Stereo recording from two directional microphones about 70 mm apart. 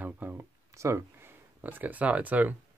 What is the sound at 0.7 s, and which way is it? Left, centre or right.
Speech, right.